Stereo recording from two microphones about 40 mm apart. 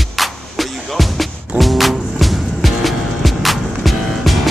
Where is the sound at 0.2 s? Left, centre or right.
Centre.